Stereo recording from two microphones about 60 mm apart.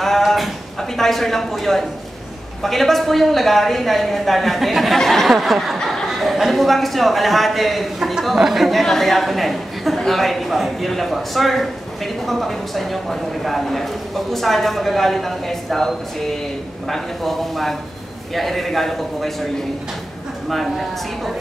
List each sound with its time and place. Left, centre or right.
0.0 s a sound: centre
2.6 s a man's voice: centre
20.4 s a man's voice: centre